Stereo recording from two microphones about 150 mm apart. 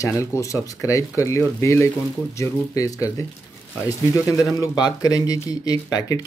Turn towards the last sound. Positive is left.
turn(degrees=25)  # may be behind; listen again after turning